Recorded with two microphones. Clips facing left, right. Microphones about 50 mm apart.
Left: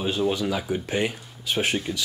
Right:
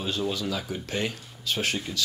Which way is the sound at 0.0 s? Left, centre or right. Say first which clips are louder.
Left 5 dB; left.